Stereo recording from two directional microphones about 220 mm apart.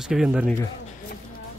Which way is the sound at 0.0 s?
Centre (ahead or behind).